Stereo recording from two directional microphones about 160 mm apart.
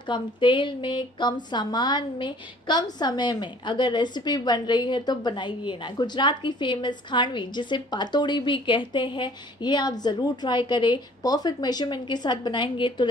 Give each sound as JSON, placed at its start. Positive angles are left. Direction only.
{"t": 0.0, "sound": "speech", "side_deg": 30}